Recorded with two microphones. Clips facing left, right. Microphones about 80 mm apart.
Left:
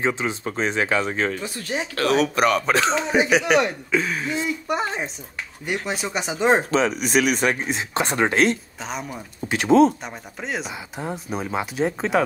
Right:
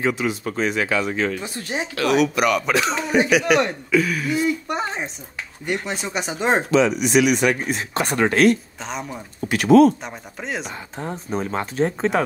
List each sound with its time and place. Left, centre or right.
0.0 s speech: left
1.4 s speech: right
2.0 s speech: left
4.8 s speech: centre
6.7 s speech: left
7.6 s speech: left
8.8 s speech: centre
9.5 s speech: left
10.0 s speech: centre